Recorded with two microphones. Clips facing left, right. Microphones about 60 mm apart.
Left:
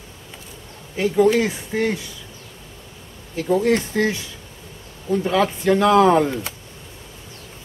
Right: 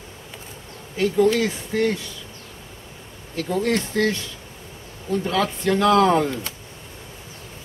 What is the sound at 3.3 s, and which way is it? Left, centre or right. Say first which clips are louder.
Speech: left 4 dB; centre.